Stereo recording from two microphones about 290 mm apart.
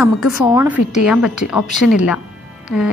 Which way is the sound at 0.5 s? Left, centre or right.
Centre.